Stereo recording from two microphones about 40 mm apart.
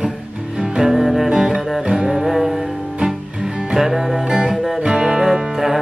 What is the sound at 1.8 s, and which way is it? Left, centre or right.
Music, right.